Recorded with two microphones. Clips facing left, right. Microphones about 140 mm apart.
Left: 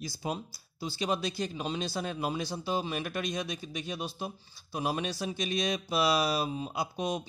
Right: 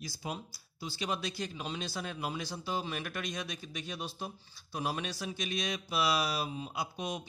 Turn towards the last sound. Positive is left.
turn(degrees=30)  # may be behind; listen again after turning